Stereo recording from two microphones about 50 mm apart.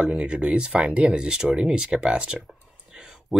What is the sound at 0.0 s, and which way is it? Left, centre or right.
Speech, centre.